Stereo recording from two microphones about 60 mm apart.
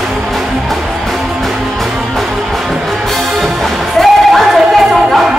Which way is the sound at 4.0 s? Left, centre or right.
Centre.